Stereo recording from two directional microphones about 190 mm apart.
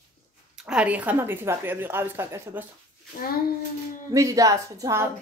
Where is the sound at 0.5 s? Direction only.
5° right (ahead or behind).